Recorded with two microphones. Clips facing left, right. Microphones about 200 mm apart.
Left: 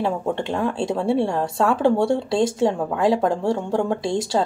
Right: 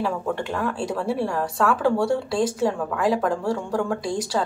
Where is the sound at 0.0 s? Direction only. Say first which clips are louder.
Left 2 dB; 25° left (ahead or behind).